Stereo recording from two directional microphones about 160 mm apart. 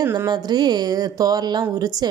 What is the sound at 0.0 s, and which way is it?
Speech, 20° right (ahead or behind).